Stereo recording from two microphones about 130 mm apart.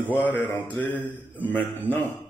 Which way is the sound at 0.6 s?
40° left (ahead or behind).